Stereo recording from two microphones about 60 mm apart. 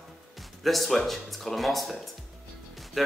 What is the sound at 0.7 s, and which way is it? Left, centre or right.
Speech, centre.